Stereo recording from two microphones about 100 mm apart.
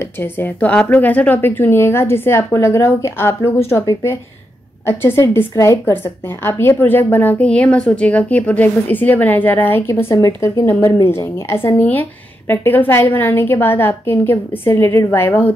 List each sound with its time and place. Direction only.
0.0 s a woman's voice: 20° left (ahead or behind)
4.8 s a woman's voice: 25° left (ahead or behind)
10.2 s a woman's voice: 40° left (ahead or behind)
10.9 s a woman's voice: 25° left (ahead or behind)